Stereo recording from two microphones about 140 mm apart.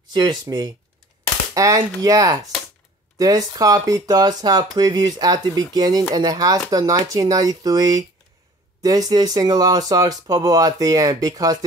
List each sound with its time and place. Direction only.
0.1 s speech: 30° right (ahead or behind)